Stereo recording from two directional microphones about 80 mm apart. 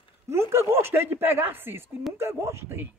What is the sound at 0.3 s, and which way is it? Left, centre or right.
Speech, right.